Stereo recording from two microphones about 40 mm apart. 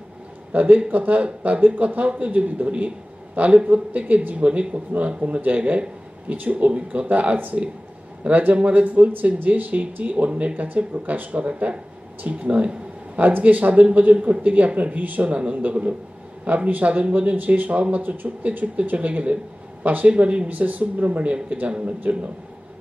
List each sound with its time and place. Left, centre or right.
0.5 s speech: right
13.2 s speech: right
15.2 s speech: right
18.0 s speech: right
20.1 s speech: right
20.4 s speech: right